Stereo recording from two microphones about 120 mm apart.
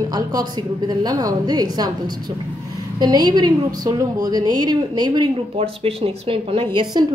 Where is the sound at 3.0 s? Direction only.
35° right (ahead or behind).